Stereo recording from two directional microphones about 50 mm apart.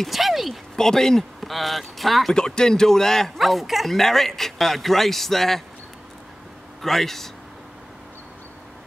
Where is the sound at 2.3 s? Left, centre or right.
Centre.